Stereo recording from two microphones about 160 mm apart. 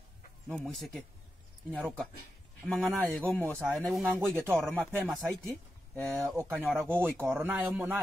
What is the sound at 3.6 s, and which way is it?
Speech, centre (ahead or behind).